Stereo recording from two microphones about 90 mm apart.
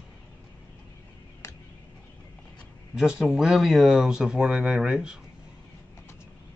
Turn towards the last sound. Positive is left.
turn(degrees=-10)  # may be behind; listen again after turning